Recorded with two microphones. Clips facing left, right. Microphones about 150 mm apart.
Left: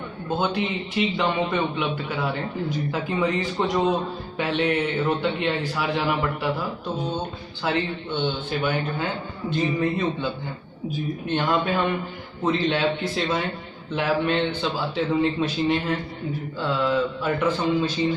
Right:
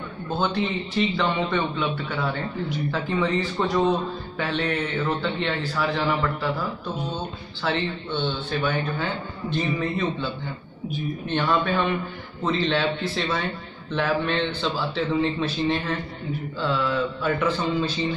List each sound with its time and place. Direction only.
0.3 s a man's voice: 10° left (ahead or behind)
8.1 s a man's voice: 15° left (ahead or behind)
11.2 s a man's voice: 15° left (ahead or behind)
15.6 s a man's voice: 10° left (ahead or behind)